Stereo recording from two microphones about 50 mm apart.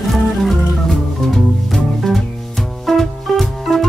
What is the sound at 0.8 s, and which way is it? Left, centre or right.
Music, centre.